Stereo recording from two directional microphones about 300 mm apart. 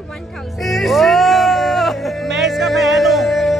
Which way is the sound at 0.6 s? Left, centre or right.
Centre.